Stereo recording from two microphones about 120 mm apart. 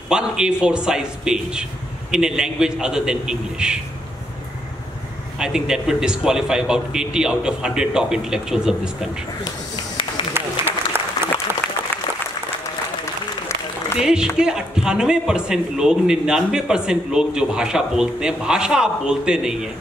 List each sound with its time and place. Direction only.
0.1 s speech: 5° right (ahead or behind)
5.4 s a man's voice: 5° right (ahead or behind)
10.3 s applause: 20° right (ahead or behind)
14.0 s a man's voice: 5° right (ahead or behind)